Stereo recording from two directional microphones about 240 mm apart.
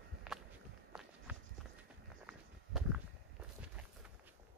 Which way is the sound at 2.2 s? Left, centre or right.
Centre.